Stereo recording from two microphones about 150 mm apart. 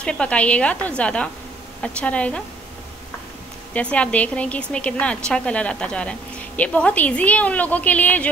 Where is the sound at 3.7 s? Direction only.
10° left (ahead or behind).